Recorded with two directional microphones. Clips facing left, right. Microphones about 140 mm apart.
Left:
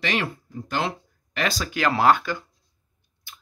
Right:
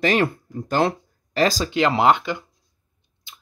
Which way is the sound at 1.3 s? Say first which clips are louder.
Right 7 dB; 35° right (ahead or behind).